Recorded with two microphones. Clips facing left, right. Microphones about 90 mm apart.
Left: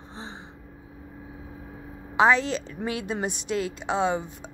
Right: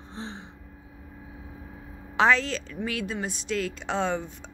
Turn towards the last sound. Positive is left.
turn(degrees=10)  # may be behind; listen again after turning